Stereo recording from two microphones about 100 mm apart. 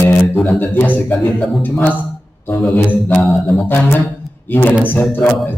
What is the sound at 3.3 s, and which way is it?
Mantra, centre (ahead or behind).